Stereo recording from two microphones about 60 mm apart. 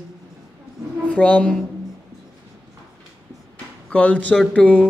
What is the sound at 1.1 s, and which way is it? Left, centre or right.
Speech, centre.